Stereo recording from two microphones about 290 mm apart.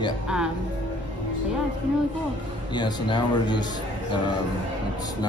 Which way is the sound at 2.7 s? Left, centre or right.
Centre.